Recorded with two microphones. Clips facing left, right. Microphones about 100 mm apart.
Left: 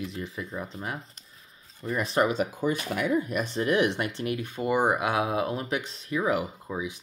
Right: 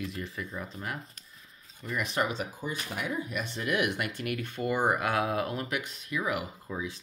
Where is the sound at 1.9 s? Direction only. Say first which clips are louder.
Left 5 dB; 35° left (ahead or behind).